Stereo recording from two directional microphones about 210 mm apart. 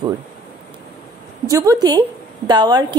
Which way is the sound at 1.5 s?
15° right (ahead or behind).